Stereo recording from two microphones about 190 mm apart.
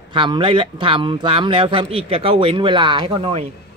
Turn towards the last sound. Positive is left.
turn(degrees=-30)  # may be behind; listen again after turning